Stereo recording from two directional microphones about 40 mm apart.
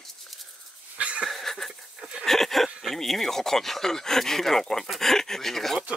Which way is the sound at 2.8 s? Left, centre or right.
Centre.